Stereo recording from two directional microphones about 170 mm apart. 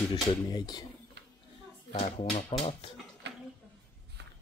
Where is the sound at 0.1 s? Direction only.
25° left (ahead or behind).